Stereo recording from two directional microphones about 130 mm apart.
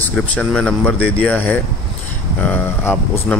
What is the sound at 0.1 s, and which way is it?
Speech, 5° left (ahead or behind).